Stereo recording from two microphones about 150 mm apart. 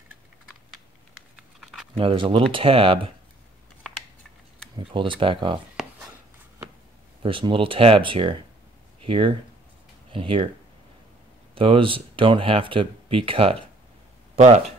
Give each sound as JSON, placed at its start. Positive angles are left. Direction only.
{"t": 1.6, "sound": "typing", "side_deg": 0}
{"t": 2.0, "sound": "speech", "side_deg": -35}
{"t": 4.7, "sound": "speech", "side_deg": -35}
{"t": 5.8, "sound": "writing", "side_deg": 0}
{"t": 7.2, "sound": "speech", "side_deg": -35}
{"t": 11.5, "sound": "speech", "side_deg": -35}
{"t": 14.3, "sound": "a sound", "side_deg": -45}